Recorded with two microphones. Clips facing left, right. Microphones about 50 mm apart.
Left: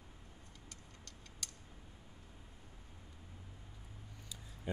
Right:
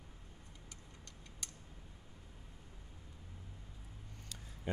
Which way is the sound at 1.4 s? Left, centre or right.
Right.